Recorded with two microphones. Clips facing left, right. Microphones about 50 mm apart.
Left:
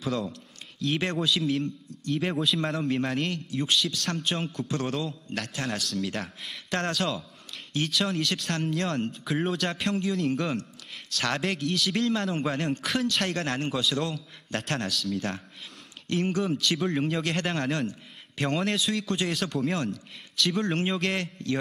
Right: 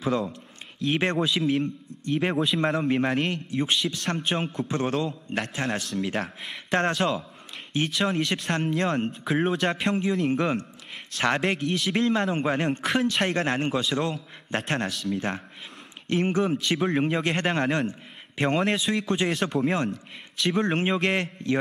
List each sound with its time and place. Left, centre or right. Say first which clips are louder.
0.1 s a man's voice: right 4 dB; right